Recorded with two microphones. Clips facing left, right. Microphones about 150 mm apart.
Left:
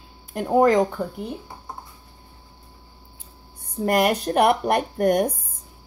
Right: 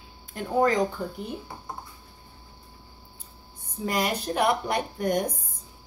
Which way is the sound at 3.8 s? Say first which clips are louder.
Left 7 dB; 60° left (ahead or behind).